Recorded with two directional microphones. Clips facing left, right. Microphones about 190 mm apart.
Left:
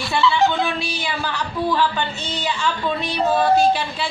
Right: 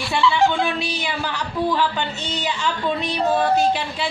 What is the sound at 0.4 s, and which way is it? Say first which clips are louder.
Speech: even; 10° right (ahead or behind).